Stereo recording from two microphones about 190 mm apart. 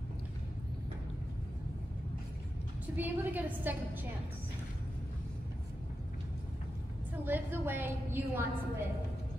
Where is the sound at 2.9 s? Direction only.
10° right (ahead or behind).